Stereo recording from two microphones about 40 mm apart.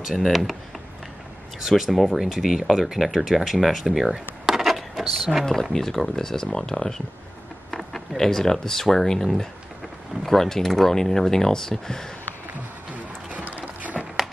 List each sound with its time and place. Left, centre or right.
0.2 s speech: centre
1.6 s speech: centre
4.5 s a sound: centre
5.0 s speech: centre
8.2 s speech: centre
12.9 s a sound: right